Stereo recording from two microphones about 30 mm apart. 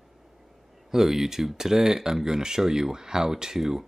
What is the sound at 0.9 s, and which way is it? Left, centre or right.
Speech, centre.